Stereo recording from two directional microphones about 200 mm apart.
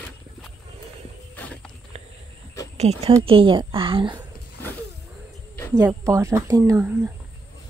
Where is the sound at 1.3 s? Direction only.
5° left (ahead or behind).